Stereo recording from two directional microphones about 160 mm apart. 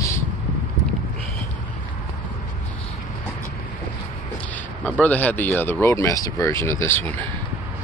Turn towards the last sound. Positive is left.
turn(degrees=10)  # may be behind; listen again after turning